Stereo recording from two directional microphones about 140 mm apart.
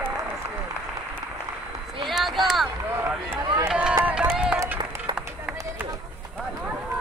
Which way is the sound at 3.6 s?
5° right (ahead or behind).